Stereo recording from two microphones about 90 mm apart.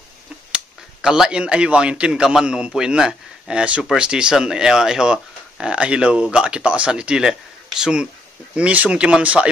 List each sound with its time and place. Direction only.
1.0 s a man's voice: 5° right (ahead or behind)